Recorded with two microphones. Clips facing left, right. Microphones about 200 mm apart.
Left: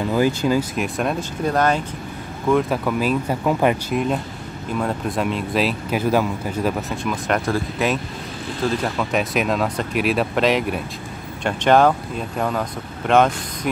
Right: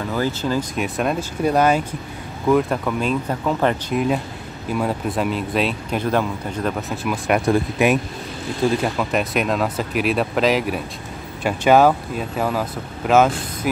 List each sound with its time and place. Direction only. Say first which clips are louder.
0.1 s speech: left 3 dB; 15° left (ahead or behind)
0.7 s speech: right 1 dB; centre (ahead or behind)
2.5 s speech: even; 5° left (ahead or behind)
7.0 s speech: right 2 dB; 10° right (ahead or behind)
8.8 s speech: right 1 dB; 5° right (ahead or behind)